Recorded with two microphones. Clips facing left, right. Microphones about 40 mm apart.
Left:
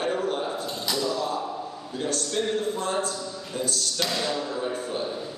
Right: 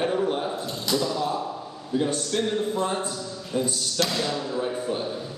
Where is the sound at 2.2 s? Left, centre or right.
Centre.